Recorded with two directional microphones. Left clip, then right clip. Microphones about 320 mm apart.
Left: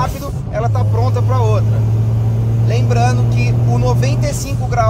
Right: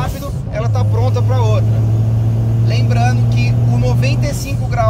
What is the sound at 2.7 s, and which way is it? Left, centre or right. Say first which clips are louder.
Speech: left 2 dB; centre.